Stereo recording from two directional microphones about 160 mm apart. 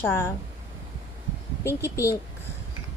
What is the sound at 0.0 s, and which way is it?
Speech, 15° left (ahead or behind).